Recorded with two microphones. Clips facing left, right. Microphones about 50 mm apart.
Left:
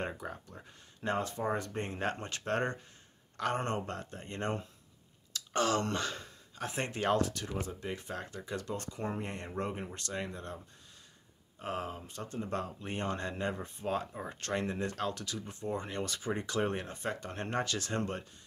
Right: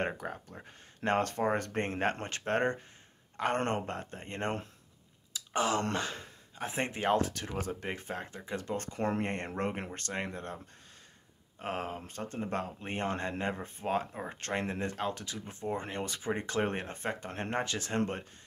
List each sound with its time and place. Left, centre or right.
0.0 s speech: right
1.1 s speech: right
3.5 s speech: right
5.3 s a sound: centre
5.8 s speech: right
11.6 s speech: right